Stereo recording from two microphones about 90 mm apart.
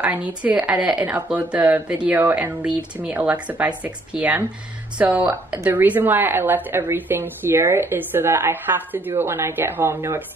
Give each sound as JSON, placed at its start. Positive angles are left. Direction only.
{"t": 0.0, "sound": "speech", "side_deg": -15}